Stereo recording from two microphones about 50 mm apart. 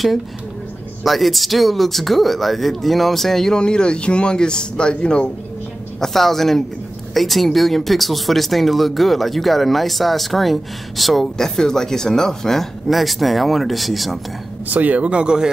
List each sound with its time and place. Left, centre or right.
1.0 s speech: centre
5.9 s speech: centre
14.7 s speech: right; by 15.5 s centre